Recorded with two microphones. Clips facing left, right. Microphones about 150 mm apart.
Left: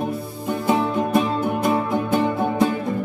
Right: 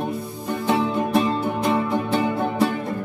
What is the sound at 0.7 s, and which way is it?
Music, 10° left (ahead or behind).